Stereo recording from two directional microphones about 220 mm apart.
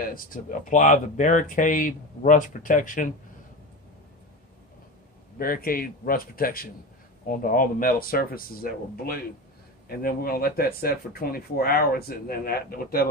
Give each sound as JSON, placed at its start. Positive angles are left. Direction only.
{"t": 0.0, "sound": "speech", "side_deg": 40}
{"t": 5.4, "sound": "speech", "side_deg": 40}